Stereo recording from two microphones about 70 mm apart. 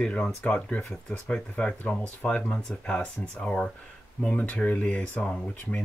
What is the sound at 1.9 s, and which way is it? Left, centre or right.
Speech, centre.